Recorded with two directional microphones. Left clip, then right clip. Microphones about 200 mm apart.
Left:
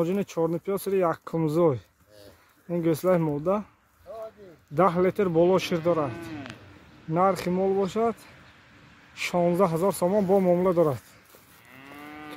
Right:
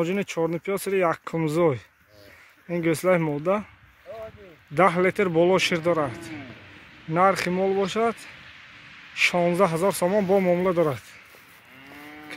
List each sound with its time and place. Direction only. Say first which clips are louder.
0.0 s speech: right 1 dB; centre (ahead or behind)
4.1 s a sound: right 1 dB; 45° right (ahead or behind)
4.7 s speech: right 2 dB; centre (ahead or behind)
7.1 s speech: right 3 dB; centre (ahead or behind)